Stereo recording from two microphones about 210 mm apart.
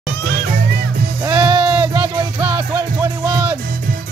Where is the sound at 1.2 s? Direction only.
20° right (ahead or behind).